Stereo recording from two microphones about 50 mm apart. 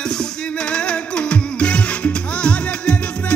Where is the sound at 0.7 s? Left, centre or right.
Left.